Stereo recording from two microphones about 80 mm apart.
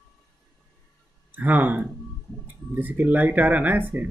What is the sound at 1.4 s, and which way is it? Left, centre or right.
Speech, right.